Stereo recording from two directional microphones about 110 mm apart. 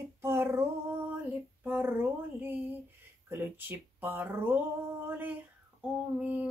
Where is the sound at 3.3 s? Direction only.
20° right (ahead or behind).